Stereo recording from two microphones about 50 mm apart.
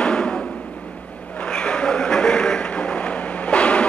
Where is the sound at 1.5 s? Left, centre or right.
Left.